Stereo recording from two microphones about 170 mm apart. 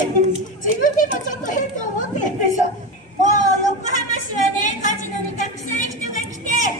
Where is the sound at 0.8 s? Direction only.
50° left (ahead or behind).